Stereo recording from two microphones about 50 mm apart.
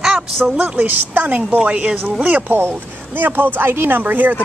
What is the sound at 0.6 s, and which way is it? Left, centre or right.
Speech, right.